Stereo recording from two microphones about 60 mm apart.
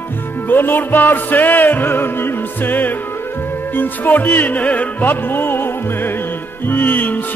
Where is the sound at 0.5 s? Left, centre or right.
Left.